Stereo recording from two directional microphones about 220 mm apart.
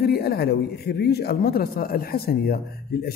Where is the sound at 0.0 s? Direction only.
45° left (ahead or behind).